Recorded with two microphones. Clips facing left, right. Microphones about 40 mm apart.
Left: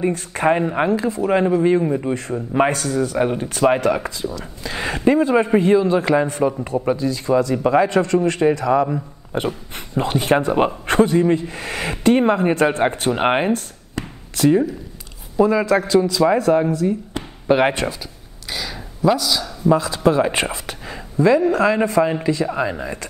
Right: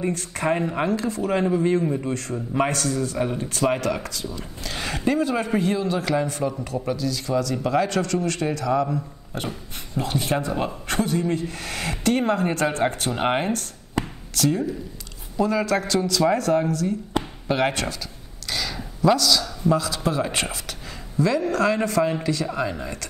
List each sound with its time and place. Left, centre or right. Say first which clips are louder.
0.0 s speech: left 6 dB; left
18.5 s a sound: even; centre
19.7 s speech: left 7 dB; left